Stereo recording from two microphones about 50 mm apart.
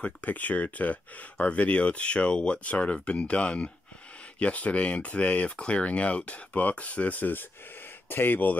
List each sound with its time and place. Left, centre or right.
0.0 s speech: left